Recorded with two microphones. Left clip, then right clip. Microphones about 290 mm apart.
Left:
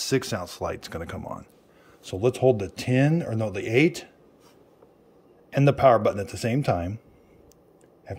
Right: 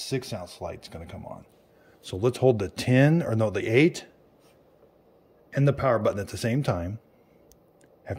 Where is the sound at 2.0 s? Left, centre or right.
Centre.